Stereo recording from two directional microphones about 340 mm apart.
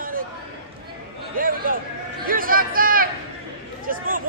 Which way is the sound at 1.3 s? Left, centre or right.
Right.